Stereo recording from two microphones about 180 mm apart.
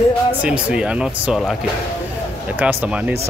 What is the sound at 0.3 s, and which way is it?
Speech, 5° right (ahead or behind).